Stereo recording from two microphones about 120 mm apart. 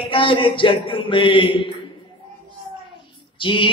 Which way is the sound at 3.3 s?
45° left (ahead or behind).